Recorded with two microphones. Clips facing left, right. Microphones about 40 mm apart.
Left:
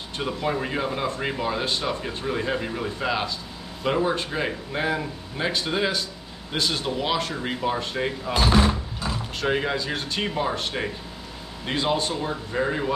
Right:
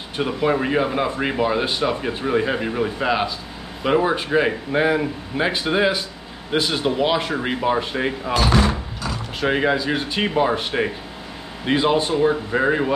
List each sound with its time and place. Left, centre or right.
0.2 s speech: right
9.4 s speech: centre